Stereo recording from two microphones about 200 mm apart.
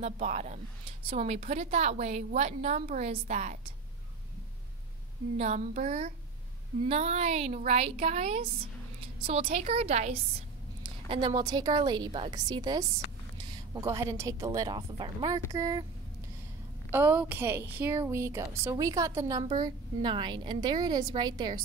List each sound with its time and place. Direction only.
0.0 s a woman's voice: 35° right (ahead or behind)
5.4 s a woman's voice: 35° right (ahead or behind); by 15.8 s 20° right (ahead or behind)
16.9 s a woman's voice: 10° right (ahead or behind)